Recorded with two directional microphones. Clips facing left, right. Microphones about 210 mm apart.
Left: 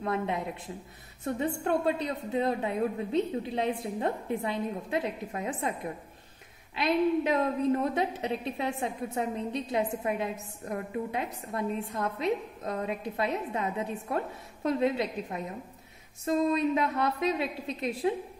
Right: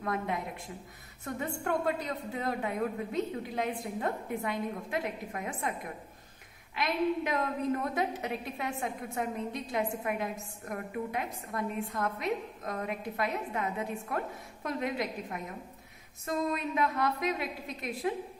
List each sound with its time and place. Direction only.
0.0 s a woman's voice: 30° left (ahead or behind)